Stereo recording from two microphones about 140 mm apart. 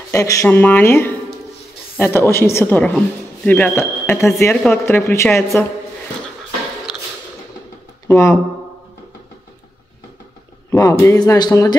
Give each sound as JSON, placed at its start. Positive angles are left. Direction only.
{"t": 0.1, "sound": "a woman's voice", "side_deg": 25}
{"t": 8.1, "sound": "a woman's voice", "side_deg": 20}
{"t": 10.7, "sound": "a woman's voice", "side_deg": 20}